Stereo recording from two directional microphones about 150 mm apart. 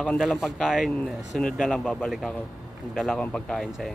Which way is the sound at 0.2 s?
Centre (ahead or behind).